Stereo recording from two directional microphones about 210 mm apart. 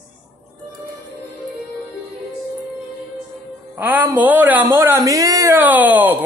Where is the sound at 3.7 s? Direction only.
10° right (ahead or behind).